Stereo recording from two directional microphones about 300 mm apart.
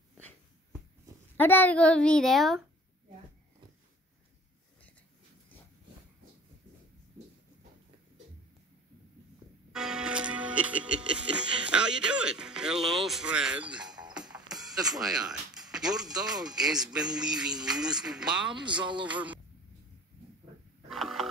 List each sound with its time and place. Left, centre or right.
1.3 s music: centre
9.7 s speech: centre
14.6 s music: centre
18.7 s speech: centre
19.0 s music: centre
20.9 s a sound: centre